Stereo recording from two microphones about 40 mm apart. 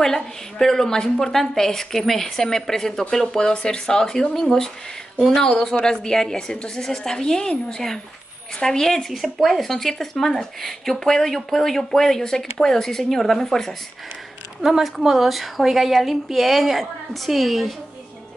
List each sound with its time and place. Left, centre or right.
0.0 s a woman's voice: centre
9.1 s a woman's voice: centre
14.6 s a woman's voice: centre